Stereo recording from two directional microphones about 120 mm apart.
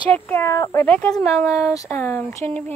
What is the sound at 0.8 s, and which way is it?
Speech, 10° left (ahead or behind).